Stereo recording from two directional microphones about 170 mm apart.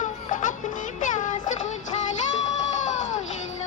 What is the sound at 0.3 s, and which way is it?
Music, 50° left (ahead or behind).